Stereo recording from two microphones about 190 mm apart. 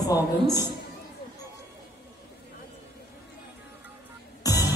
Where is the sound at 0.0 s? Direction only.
20° left (ahead or behind).